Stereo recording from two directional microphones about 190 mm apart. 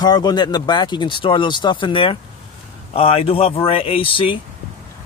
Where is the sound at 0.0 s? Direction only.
20° left (ahead or behind).